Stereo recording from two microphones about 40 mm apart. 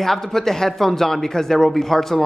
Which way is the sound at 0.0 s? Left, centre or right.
Centre.